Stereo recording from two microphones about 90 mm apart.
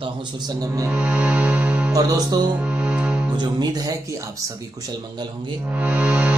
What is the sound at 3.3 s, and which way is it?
Speech, 50° right (ahead or behind).